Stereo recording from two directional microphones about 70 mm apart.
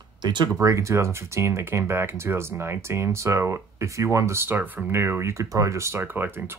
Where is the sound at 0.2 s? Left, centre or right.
Right.